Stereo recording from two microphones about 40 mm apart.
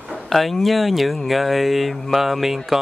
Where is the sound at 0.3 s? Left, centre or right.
Centre.